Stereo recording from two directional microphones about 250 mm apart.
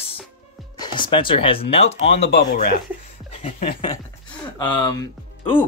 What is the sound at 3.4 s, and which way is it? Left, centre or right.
Speech, left.